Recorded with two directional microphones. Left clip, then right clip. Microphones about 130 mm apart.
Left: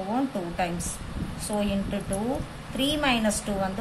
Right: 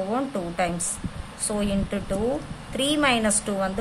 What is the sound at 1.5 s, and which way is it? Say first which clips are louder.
Speech: right 1 dB; 50° right (ahead or behind).